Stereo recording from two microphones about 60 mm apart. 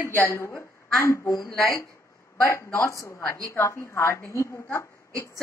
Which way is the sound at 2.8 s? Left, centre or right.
Left.